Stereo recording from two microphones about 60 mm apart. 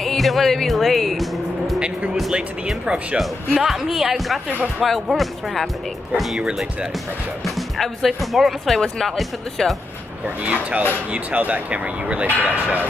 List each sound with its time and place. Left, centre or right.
0.0 s speech: centre
2.3 s speech: centre
3.2 s speech: centre
4.5 s speech: right
5.0 s speech: centre
6.4 s speech: centre
7.4 s speech: centre
10.2 s speech: right